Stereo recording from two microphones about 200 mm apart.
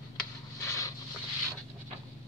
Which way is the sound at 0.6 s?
15° left (ahead or behind).